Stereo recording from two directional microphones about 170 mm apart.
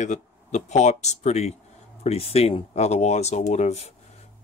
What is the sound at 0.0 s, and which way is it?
Speech, 45° left (ahead or behind).